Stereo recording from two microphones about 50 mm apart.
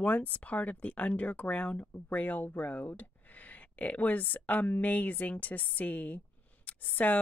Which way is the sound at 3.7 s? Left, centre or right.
Left.